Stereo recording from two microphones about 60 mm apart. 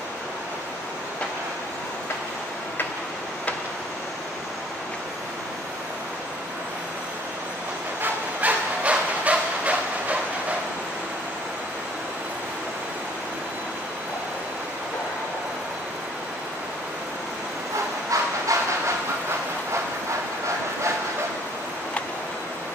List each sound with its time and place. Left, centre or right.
8.0 s bow-wow: right
18.1 s a sound: right
18.5 s train: right